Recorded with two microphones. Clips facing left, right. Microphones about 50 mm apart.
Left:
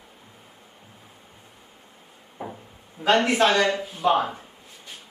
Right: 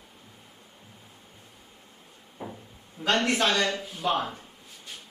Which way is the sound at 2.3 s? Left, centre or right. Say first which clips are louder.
Left 4 dB; centre.